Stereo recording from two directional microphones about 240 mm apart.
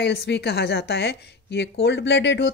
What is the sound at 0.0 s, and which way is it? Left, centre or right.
A woman's voice, left.